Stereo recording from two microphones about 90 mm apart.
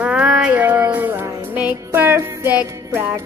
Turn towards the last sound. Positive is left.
turn(degrees=-25)  # may be behind; listen again after turning